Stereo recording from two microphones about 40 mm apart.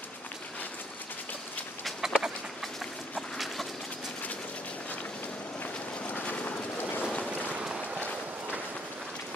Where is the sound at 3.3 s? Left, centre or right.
Centre.